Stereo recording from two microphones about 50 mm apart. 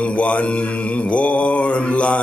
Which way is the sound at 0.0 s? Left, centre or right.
Left.